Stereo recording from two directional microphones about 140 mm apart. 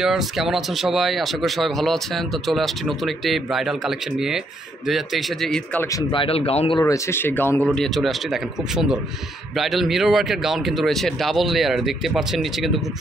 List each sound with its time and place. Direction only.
0.0 s speech: centre (ahead or behind)
6.1 s speech: 40° left (ahead or behind)
6.8 s speech: 20° left (ahead or behind)
7.7 s speech: centre (ahead or behind)